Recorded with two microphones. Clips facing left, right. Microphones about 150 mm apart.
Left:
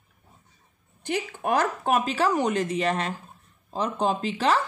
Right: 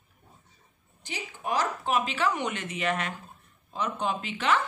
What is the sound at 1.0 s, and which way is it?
Speech, 55° left (ahead or behind).